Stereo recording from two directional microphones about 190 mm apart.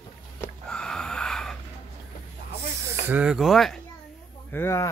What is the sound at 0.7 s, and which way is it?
Snort, 5° left (ahead or behind).